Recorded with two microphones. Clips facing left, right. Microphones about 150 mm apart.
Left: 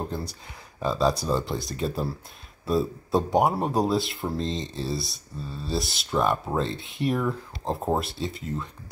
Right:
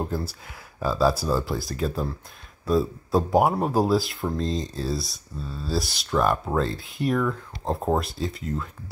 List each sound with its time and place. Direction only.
0.0 s speech: 5° right (ahead or behind)